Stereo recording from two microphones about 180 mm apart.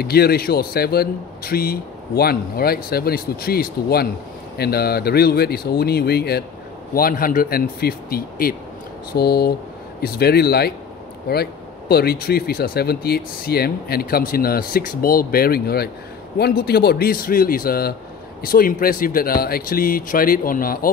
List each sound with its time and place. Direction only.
0.0 s speech: 60° left (ahead or behind)